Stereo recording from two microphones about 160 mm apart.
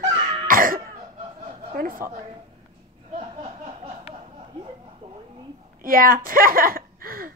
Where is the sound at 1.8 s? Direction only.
60° right (ahead or behind).